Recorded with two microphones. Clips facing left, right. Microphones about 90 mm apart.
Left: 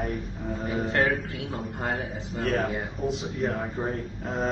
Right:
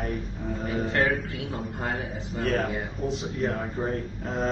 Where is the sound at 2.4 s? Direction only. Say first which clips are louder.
Even; 15° left (ahead or behind).